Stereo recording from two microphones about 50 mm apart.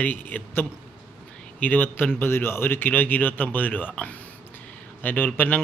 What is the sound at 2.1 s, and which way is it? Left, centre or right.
A man's voice, left.